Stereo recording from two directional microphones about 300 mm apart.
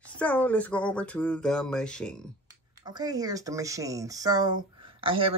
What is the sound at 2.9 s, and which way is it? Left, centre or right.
Speech, centre.